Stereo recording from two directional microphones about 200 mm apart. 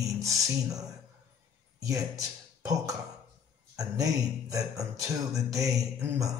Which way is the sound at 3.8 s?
15° right (ahead or behind).